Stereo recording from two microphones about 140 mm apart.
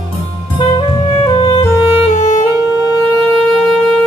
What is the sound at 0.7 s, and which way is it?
Music, 35° left (ahead or behind).